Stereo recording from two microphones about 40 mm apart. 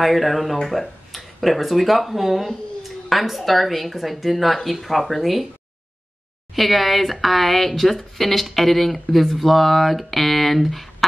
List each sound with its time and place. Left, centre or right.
0.0 s speech: centre
6.5 s speech: centre